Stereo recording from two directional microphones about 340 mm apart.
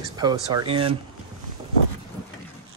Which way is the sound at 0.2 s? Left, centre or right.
Centre.